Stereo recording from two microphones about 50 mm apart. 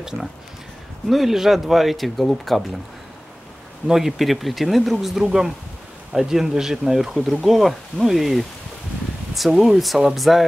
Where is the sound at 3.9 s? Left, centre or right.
Centre.